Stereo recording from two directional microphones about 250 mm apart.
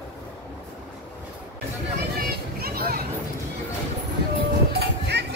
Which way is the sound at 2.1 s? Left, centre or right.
Right.